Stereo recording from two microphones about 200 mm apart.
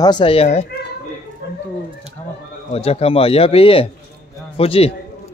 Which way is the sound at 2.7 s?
30° left (ahead or behind).